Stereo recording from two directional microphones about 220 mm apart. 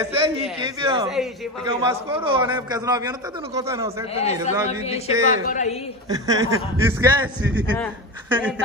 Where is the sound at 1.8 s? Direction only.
20° right (ahead or behind).